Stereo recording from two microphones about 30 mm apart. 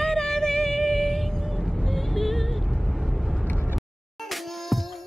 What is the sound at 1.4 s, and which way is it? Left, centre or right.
Vehicle, centre.